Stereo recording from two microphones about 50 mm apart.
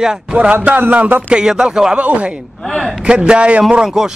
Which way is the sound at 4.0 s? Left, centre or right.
Centre.